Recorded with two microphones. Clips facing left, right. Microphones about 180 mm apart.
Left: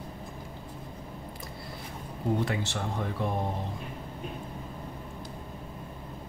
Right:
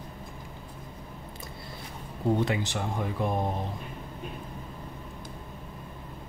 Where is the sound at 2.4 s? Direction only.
15° right (ahead or behind).